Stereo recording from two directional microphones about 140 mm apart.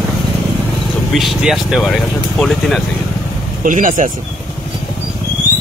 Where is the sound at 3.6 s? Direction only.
70° right (ahead or behind).